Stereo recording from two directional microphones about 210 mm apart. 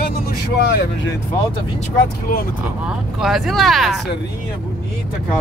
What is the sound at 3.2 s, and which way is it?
Speech, centre (ahead or behind).